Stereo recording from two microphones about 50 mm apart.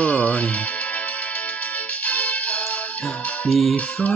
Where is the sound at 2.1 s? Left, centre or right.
Left.